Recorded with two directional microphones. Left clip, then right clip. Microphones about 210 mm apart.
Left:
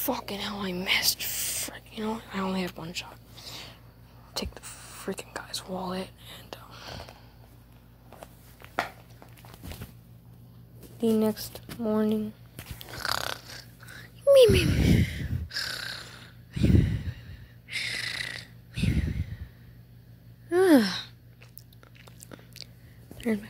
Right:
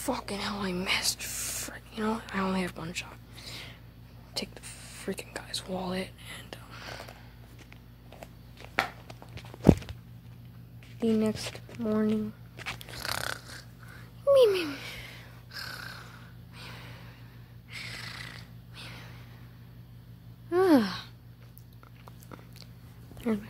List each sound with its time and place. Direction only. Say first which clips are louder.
0.0 s speech: left 1 dB; 5° left (ahead or behind)
2.0 s speech: right 2 dB; 5° right (ahead or behind)
4.3 s whispering: left 2 dB; 5° left (ahead or behind)
11.0 s speech: left 3 dB; 15° left (ahead or behind)
12.7 s snoring: left 6 dB; 5° left (ahead or behind)
14.3 s purr: left 4 dB; 20° left (ahead or behind)
17.6 s wheeze: left 9 dB; 20° left (ahead or behind)
20.4 s wail: left 3 dB; 20° left (ahead or behind)
23.1 s a sound: left 2 dB; 15° left (ahead or behind)